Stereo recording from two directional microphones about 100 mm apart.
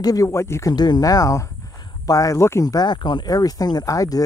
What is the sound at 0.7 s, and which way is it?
Speech, 40° left (ahead or behind).